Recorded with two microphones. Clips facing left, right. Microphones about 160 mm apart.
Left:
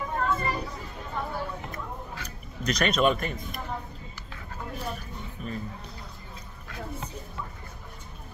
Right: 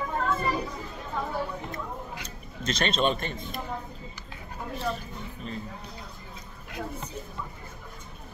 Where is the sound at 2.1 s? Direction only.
25° right (ahead or behind).